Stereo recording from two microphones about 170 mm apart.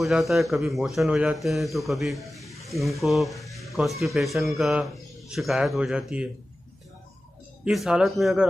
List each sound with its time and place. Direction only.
0.0 s a man's voice: centre (ahead or behind)
7.6 s a man's voice: 5° right (ahead or behind)